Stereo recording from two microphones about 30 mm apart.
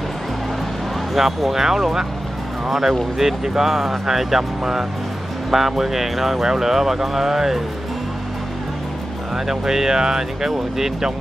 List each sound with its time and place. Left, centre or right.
1.1 s speech: centre
9.5 s speech: centre